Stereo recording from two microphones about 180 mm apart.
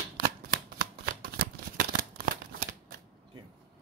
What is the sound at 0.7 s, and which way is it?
Shuffling cards, 55° right (ahead or behind).